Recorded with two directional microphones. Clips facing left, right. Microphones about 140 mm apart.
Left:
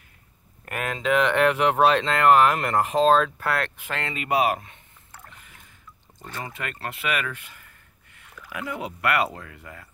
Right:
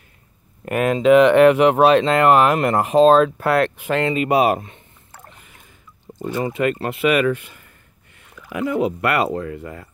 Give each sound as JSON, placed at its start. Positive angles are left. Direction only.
{"t": 0.7, "sound": "speech", "side_deg": -20}
{"t": 6.2, "sound": "speech", "side_deg": -15}